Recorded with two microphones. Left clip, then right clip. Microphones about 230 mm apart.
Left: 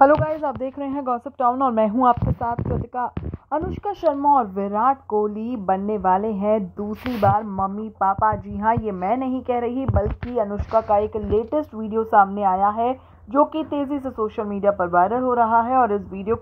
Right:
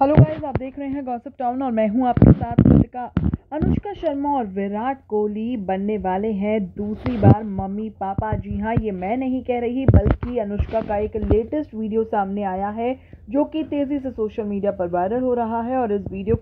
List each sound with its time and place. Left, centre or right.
0.0 s speech: left
3.5 s speech: left